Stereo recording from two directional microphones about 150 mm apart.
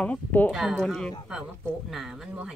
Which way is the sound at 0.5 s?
Centre (ahead or behind).